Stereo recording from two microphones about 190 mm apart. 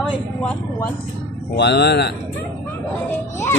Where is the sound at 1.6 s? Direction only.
60° left (ahead or behind).